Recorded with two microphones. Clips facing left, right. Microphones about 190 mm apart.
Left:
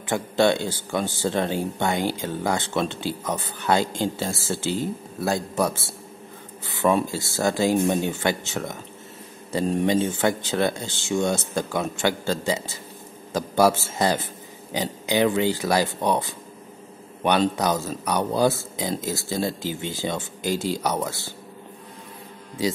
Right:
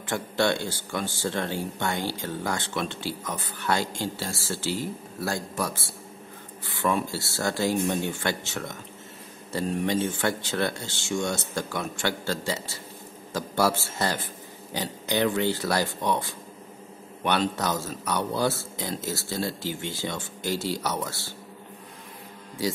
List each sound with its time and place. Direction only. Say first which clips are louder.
0.1 s speech: left 5 dB; 20° left (ahead or behind)
6.9 s a man's voice: left 5 dB; 15° left (ahead or behind)